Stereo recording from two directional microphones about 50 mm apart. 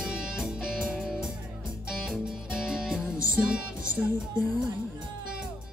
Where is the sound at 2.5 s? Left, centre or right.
Centre.